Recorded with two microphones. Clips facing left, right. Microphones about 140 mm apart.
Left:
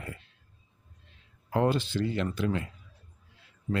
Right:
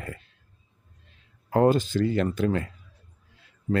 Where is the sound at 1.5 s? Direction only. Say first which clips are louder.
Right 6 dB; 45° right (ahead or behind).